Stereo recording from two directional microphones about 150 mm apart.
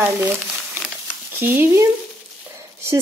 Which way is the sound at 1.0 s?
15° right (ahead or behind).